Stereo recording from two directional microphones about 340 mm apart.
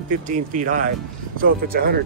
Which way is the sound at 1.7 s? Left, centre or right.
Right.